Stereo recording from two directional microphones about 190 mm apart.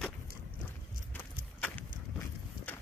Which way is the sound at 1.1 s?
10° left (ahead or behind).